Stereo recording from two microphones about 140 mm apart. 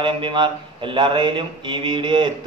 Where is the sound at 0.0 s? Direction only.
35° right (ahead or behind).